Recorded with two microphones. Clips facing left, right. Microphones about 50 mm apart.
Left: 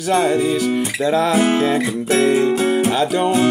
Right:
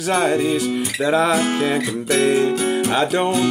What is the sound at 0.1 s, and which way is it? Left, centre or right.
Speech, right.